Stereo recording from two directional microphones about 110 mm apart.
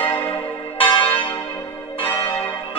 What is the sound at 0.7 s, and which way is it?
Church bell, 55° left (ahead or behind).